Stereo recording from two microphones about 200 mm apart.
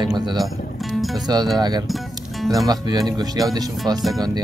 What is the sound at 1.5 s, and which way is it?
Speech, 20° right (ahead or behind).